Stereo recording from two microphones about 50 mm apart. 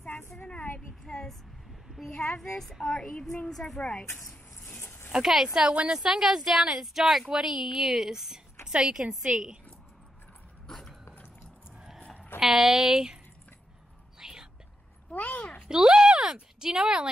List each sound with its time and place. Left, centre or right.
0.7 s child singing: centre
1.9 s a sound: centre
2.8 s child singing: centre
3.4 s a woman's voice: centre
4.7 s a sound: left
5.1 s a woman's voice: centre
5.9 s a woman's voice: centre
10.7 s dog: centre
11.7 s a sound: centre
12.4 s a woman's voice: centre
14.2 s whispering: centre
15.0 s speech: left
15.7 s a woman's voice: centre